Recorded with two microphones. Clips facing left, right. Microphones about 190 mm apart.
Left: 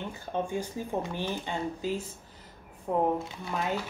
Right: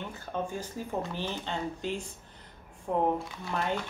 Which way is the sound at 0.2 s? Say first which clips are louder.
Left 3 dB; 15° left (ahead or behind).